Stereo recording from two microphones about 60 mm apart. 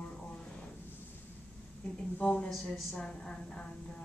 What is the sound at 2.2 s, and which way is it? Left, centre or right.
A woman's voice, left.